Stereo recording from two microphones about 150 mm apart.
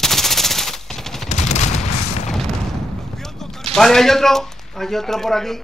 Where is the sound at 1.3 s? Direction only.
50° left (ahead or behind).